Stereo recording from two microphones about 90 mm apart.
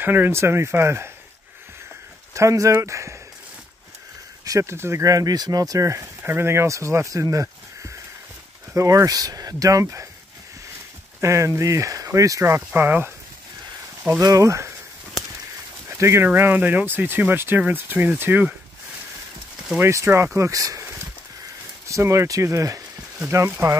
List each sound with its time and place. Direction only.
0.0 s speech: 20° right (ahead or behind)
2.3 s speech: 35° right (ahead or behind)
4.5 s speech: 35° right (ahead or behind)
11.1 s speech: 35° right (ahead or behind)
14.2 s speech: 35° right (ahead or behind)
15.9 s speech: 30° right (ahead or behind)
19.8 s speech: 30° right (ahead or behind)
21.8 s speech: 35° right (ahead or behind)